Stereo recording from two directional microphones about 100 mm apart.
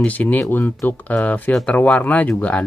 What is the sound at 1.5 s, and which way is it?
Speech, 5° left (ahead or behind).